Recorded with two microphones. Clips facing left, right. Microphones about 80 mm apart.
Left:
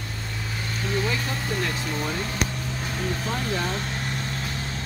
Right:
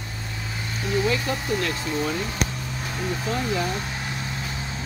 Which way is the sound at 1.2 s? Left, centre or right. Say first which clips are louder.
Right 2 dB; centre.